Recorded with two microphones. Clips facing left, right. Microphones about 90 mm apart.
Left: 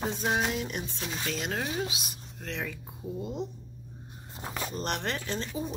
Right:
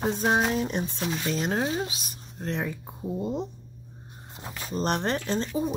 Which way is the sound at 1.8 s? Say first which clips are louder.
Left 1 dB; 35° right (ahead or behind).